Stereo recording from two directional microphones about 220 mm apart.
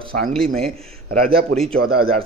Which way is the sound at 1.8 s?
45° right (ahead or behind).